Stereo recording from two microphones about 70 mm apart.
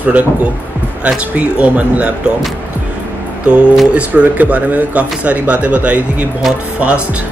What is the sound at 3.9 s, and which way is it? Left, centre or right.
Speech, right.